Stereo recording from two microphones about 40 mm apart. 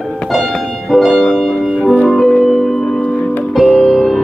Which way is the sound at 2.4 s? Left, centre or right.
Centre.